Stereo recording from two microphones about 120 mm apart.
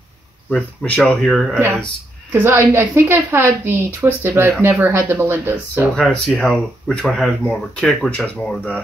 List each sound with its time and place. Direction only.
0.5 s speech: 10° left (ahead or behind)
2.3 s a woman's voice: 20° right (ahead or behind)
6.2 s speech: 5° left (ahead or behind)